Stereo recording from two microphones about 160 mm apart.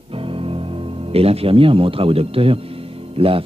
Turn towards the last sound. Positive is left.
turn(degrees=-35)  # may be behind; listen again after turning